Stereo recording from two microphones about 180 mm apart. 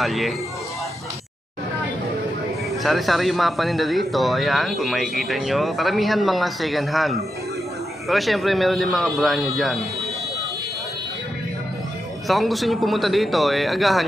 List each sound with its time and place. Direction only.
0.0 s speech: centre (ahead or behind)
2.8 s speech: centre (ahead or behind)
12.3 s speech: centre (ahead or behind)